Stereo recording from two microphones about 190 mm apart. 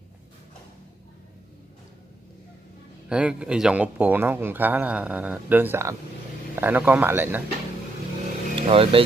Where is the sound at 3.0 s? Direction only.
5° right (ahead or behind).